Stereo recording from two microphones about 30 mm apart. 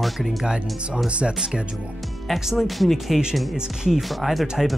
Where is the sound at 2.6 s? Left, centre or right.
Centre.